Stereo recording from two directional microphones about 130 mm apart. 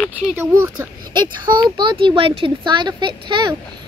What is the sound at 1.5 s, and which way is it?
Speech, 35° right (ahead or behind).